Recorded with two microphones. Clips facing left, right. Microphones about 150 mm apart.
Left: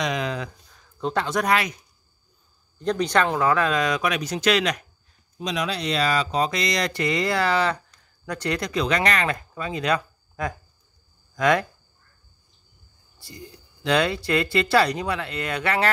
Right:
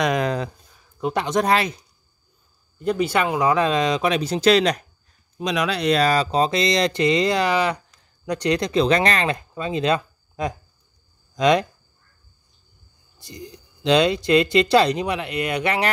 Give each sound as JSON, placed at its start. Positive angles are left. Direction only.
{"t": 0.0, "sound": "a sound", "side_deg": -50}
{"t": 0.7, "sound": "speech", "side_deg": -15}
{"t": 2.8, "sound": "speech", "side_deg": -5}
{"t": 5.4, "sound": "speech", "side_deg": -65}
{"t": 13.2, "sound": "speech", "side_deg": -20}